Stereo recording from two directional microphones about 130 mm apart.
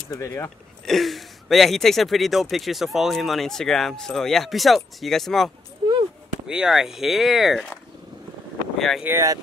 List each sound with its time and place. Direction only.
0.1 s speech: 20° left (ahead or behind)
0.8 s speech: centre (ahead or behind)
8.7 s boat: centre (ahead or behind)
9.0 s speech: 20° right (ahead or behind)